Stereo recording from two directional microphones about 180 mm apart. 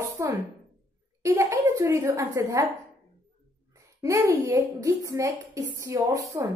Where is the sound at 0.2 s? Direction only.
15° right (ahead or behind).